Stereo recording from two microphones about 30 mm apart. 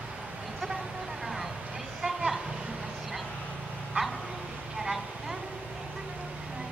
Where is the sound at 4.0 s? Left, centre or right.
Right.